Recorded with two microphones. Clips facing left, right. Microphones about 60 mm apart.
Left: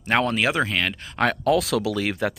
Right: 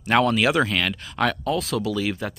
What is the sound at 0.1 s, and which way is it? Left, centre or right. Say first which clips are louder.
Speech: right 2 dB; left.